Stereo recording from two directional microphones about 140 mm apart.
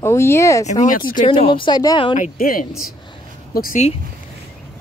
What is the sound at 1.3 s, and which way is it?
Speech, 35° left (ahead or behind).